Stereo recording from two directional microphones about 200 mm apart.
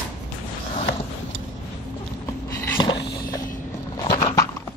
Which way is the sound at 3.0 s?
55° left (ahead or behind).